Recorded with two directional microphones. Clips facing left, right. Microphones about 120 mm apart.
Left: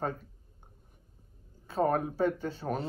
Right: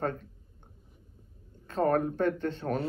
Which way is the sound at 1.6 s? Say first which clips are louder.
Right 2 dB; 5° left (ahead or behind).